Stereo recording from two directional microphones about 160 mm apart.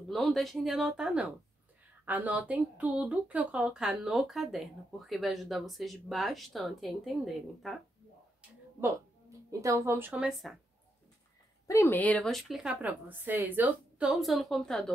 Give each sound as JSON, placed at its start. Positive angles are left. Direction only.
{"t": 0.1, "sound": "speech", "side_deg": 0}
{"t": 9.5, "sound": "speech", "side_deg": -20}
{"t": 10.2, "sound": "speech", "side_deg": 0}
{"t": 11.6, "sound": "speech", "side_deg": 20}